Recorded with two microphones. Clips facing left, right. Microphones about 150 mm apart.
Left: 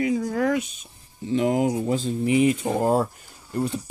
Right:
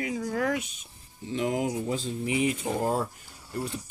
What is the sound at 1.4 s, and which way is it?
Speech, 55° left (ahead or behind).